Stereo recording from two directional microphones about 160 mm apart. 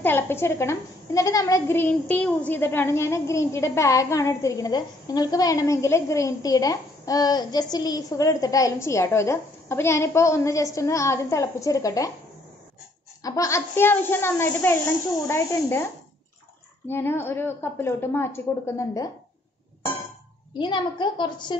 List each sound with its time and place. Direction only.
0.0 s a woman's voice: 15° left (ahead or behind)
13.2 s a woman's voice: 20° left (ahead or behind)
20.5 s a woman's voice: 30° left (ahead or behind)